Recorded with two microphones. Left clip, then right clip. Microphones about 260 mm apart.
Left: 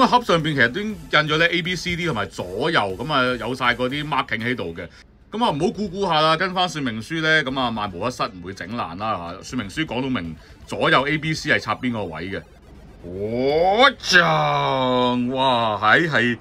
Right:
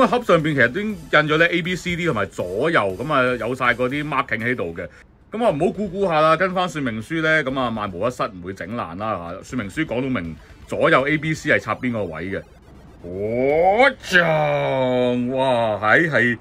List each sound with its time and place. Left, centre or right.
0.0 s speech: centre